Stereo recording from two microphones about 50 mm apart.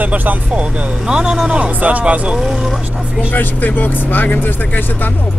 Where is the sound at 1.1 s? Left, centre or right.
Centre.